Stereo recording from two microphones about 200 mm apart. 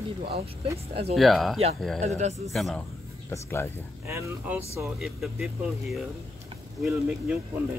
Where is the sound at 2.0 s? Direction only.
35° right (ahead or behind).